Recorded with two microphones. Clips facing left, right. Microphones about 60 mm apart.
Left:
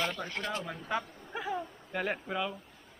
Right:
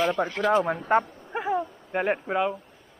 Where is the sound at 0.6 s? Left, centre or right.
Right.